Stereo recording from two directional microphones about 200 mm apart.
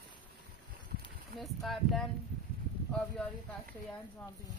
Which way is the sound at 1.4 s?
Centre (ahead or behind).